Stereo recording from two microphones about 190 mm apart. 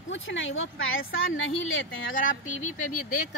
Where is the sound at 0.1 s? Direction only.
85° left.